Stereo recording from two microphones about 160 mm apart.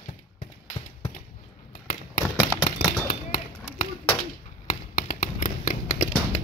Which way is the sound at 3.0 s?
70° left (ahead or behind).